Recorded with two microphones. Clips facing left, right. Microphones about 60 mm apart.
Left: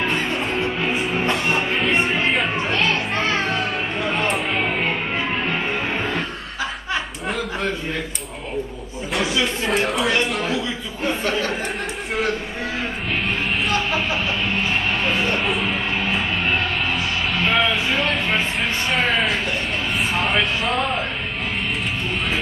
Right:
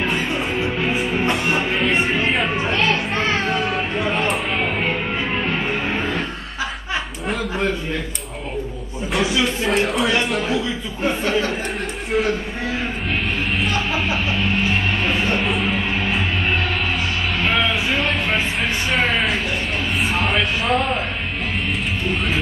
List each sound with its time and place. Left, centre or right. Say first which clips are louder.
0.1 s music: even; centre
1.8 s music: right 1 dB; centre
3.4 s music: right 2 dB; centre
4.1 s music: right 1 dB; centre
9.1 s chatter: right 2 dB; centre
15.4 s music: right 1 dB; centre
17.5 s music: even; centre
20.0 s a sound: even; centre